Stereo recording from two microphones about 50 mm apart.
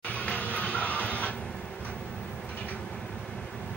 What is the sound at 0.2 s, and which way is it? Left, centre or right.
Music, left.